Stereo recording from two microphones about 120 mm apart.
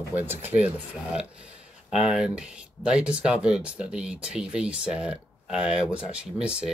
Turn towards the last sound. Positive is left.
turn(degrees=-10)  # may be behind; listen again after turning